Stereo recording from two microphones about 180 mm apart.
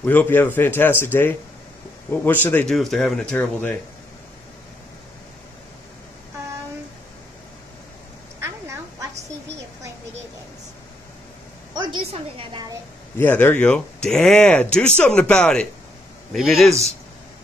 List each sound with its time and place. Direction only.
0.0 s speech: 10° left (ahead or behind)
8.4 s quack: 15° right (ahead or behind)
11.7 s a sound: 25° right (ahead or behind)
13.2 s speech: 10° left (ahead or behind)